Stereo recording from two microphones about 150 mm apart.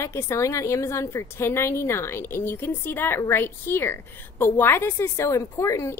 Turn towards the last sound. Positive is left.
turn(degrees=20)  # may be behind; listen again after turning